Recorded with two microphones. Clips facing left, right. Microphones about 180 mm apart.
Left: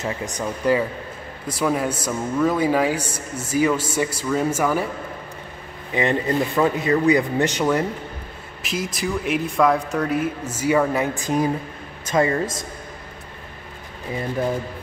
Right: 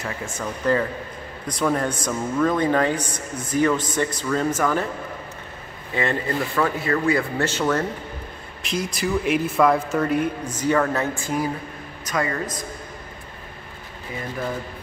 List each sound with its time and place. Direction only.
0.0 s speech: 15° left (ahead or behind)
5.9 s speech: 20° left (ahead or behind)
8.6 s a man's voice: centre (ahead or behind); by 12.4 s 25° left (ahead or behind)